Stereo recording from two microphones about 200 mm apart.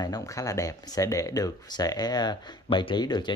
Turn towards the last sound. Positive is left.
turn(degrees=20)  # may be behind; listen again after turning